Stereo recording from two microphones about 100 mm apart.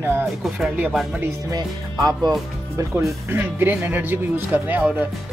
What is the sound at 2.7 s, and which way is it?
Speech, 25° right (ahead or behind).